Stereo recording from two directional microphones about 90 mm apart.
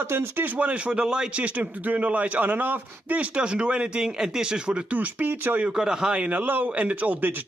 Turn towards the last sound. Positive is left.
turn(degrees=-20)  # may be behind; listen again after turning